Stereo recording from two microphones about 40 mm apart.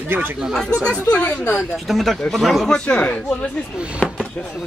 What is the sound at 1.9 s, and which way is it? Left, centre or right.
Speech, centre.